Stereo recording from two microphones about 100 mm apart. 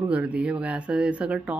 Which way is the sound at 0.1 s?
15° right (ahead or behind).